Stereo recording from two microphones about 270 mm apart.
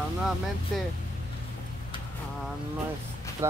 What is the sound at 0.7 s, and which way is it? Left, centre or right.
Speech, centre.